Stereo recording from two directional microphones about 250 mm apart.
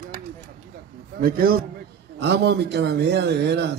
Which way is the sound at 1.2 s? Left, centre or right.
Right.